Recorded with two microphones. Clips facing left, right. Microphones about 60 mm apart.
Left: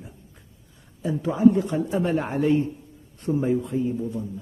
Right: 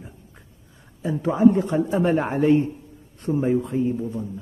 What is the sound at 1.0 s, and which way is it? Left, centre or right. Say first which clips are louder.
Speech: right 1 dB; right.